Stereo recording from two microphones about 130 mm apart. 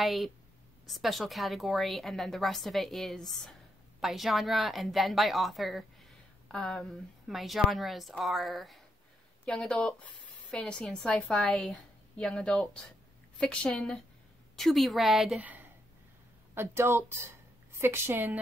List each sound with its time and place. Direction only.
0.0 s a woman's voice: centre (ahead or behind)
16.5 s a woman's voice: 20° right (ahead or behind)